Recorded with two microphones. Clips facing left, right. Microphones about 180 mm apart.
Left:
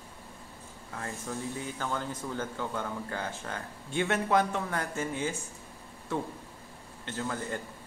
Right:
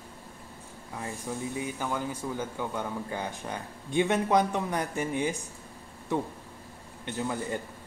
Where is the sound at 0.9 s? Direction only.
15° right (ahead or behind).